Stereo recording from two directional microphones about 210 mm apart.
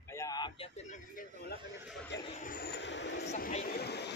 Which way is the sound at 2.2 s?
35° left (ahead or behind).